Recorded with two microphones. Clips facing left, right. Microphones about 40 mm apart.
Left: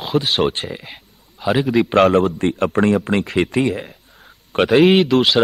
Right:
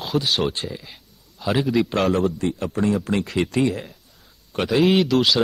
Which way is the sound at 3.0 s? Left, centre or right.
Left.